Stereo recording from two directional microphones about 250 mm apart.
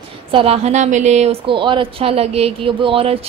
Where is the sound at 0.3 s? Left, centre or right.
Right.